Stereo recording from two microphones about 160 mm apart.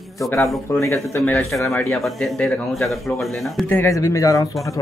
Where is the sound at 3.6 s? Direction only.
15° left (ahead or behind).